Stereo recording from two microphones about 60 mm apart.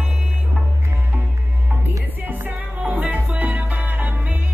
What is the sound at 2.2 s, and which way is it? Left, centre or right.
Music, right.